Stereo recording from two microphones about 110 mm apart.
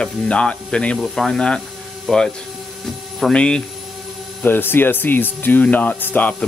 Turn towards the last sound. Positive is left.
turn(degrees=15)  # may be behind; listen again after turning